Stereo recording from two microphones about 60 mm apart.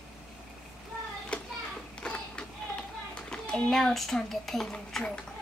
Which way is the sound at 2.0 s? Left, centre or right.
Centre.